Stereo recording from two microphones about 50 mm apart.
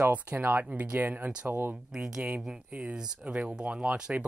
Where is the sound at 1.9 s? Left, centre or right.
Centre.